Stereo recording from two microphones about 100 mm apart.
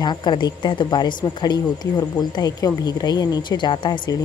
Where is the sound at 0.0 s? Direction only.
45° left (ahead or behind).